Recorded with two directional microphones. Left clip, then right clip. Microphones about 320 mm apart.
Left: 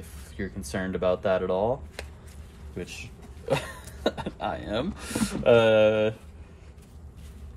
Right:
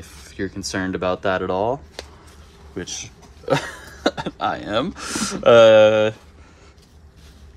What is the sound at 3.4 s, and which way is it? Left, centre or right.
Speech, right.